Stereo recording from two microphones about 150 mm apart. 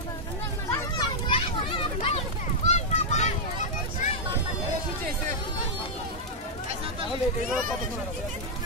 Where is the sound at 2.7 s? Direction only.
50° left (ahead or behind).